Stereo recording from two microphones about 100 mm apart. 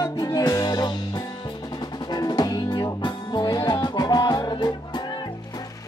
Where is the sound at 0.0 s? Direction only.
40° left (ahead or behind).